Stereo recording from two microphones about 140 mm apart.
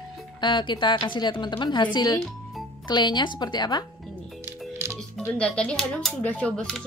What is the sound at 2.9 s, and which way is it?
Speech, 30° left (ahead or behind).